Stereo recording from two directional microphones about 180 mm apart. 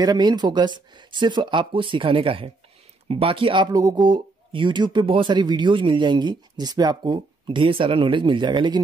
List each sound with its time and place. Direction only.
0.0 s speech: 20° right (ahead or behind)